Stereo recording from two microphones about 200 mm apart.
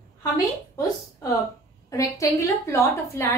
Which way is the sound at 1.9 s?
15° left (ahead or behind).